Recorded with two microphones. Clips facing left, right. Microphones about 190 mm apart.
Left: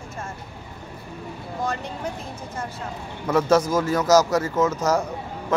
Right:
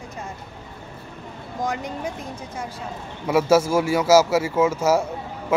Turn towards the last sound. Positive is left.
turn(degrees=-10)  # may be behind; listen again after turning